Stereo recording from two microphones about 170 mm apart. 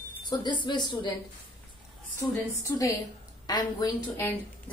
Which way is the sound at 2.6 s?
20° left (ahead or behind).